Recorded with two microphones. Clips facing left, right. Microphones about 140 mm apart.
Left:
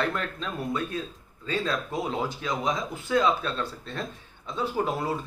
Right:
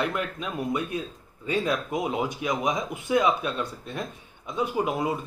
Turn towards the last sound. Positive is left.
turn(degrees=-15)  # may be behind; listen again after turning